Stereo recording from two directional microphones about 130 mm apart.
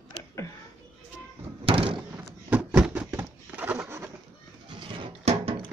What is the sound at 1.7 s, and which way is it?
Door, 45° right (ahead or behind).